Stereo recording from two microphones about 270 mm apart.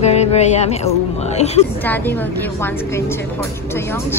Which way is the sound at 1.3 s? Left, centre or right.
Left.